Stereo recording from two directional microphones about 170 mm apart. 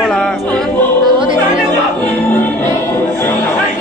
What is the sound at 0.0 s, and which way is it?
Choir, 5° left (ahead or behind).